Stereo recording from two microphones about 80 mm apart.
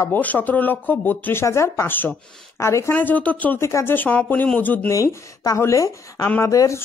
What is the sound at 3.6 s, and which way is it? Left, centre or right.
Speech, left.